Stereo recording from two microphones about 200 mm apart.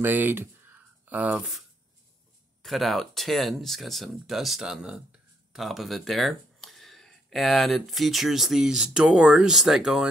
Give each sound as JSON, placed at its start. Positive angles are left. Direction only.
{"t": 0.0, "sound": "speech", "side_deg": -10}
{"t": 2.6, "sound": "speech", "side_deg": 0}